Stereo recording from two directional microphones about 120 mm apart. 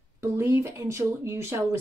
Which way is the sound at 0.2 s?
20° right (ahead or behind).